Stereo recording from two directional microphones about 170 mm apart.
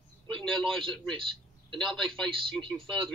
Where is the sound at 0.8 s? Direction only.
30° right (ahead or behind).